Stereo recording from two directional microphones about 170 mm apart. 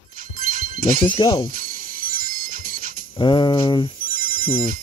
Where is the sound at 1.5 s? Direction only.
55° right (ahead or behind).